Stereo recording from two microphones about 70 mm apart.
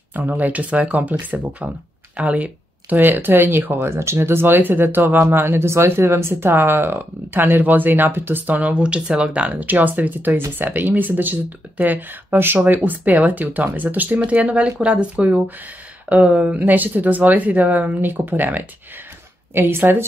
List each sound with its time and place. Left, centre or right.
0.1 s speech: right